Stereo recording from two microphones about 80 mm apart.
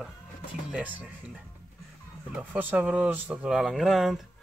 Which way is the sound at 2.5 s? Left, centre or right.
Centre.